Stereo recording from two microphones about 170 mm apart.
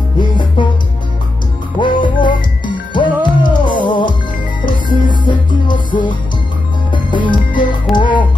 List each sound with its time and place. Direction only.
0.2 s music: 30° left (ahead or behind)
1.8 s music: 30° left (ahead or behind)
6.9 s music: 30° left (ahead or behind)